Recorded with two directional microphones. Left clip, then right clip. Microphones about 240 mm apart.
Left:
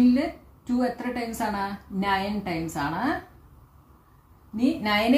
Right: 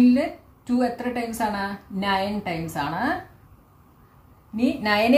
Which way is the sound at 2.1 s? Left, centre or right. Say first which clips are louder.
Right 2 dB; centre.